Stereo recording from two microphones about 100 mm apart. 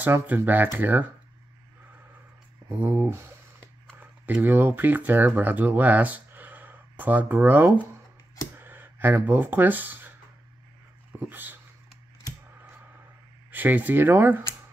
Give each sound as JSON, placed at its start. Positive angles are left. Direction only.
{"t": 0.0, "sound": "speech", "side_deg": -20}
{"t": 2.7, "sound": "speech", "side_deg": -15}
{"t": 8.5, "sound": "a sound", "side_deg": -20}
{"t": 11.1, "sound": "speech", "side_deg": -20}
{"t": 13.5, "sound": "speech", "side_deg": -20}